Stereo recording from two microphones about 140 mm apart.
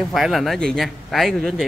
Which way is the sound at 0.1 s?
Centre (ahead or behind).